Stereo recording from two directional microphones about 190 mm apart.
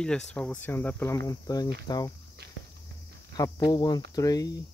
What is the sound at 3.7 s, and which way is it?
Speech, 25° left (ahead or behind).